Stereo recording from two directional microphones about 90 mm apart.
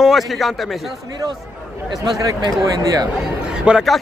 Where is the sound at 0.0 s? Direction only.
Centre (ahead or behind).